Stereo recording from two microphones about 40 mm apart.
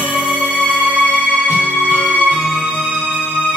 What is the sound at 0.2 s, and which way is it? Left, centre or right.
Music, right.